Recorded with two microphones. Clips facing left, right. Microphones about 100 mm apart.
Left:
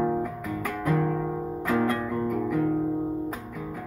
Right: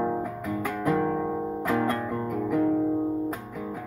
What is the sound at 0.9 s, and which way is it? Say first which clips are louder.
Guitar: even; 20° right (ahead or behind).